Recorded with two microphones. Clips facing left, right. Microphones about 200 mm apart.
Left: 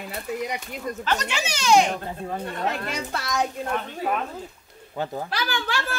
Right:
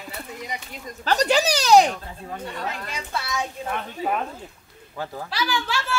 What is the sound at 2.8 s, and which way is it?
Speech, 65° left (ahead or behind).